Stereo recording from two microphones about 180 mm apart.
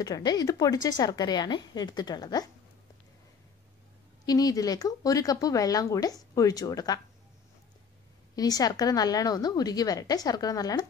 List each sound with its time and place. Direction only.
0.0 s speech: 20° left (ahead or behind)
4.3 s speech: 20° left (ahead or behind)
8.4 s speech: 20° left (ahead or behind)